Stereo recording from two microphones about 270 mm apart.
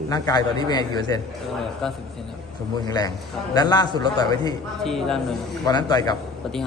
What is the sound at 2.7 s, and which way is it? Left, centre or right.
Speech, centre.